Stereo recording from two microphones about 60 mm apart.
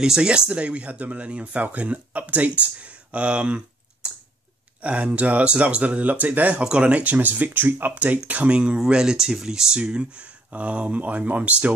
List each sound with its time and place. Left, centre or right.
0.0 s speech: centre
6.6 s speech: centre